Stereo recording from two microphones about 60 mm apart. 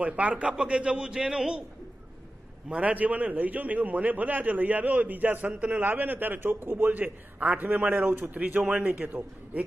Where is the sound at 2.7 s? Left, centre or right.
Right.